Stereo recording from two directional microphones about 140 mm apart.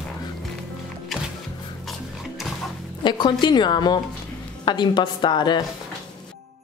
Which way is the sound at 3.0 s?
30° left (ahead or behind).